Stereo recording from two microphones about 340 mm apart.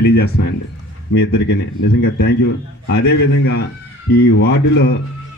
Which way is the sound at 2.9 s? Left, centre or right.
Left.